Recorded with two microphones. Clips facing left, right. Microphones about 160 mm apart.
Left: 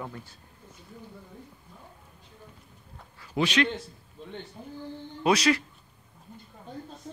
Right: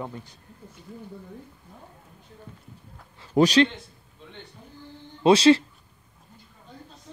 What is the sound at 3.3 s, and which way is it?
Speech, 40° right (ahead or behind).